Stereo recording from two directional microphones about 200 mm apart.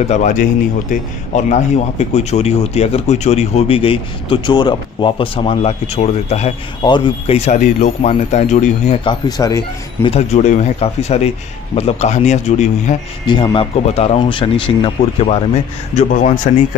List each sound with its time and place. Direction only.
0.0 s a man's voice: 35° left (ahead or behind)
9.0 s speech: 20° left (ahead or behind)
10.0 s a man's voice: 30° left (ahead or behind)
13.3 s a man's voice: 25° left (ahead or behind); by 16.3 s 40° left (ahead or behind)